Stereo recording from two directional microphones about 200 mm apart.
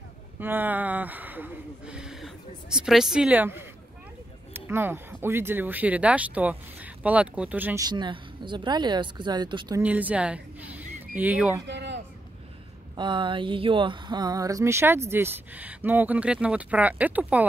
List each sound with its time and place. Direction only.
0.4 s speech: 10° right (ahead or behind)
9.8 s speech: 10° right (ahead or behind)
11.6 s a sound: 60° right (ahead or behind)
12.9 s speech: 25° right (ahead or behind); by 17.5 s 10° right (ahead or behind)